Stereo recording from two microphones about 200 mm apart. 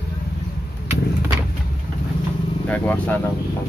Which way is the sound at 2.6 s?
10° left (ahead or behind).